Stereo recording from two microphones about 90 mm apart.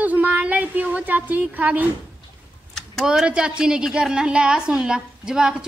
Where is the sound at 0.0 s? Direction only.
20° right (ahead or behind).